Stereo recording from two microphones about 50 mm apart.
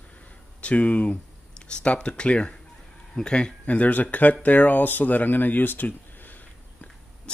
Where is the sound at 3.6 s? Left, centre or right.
Left.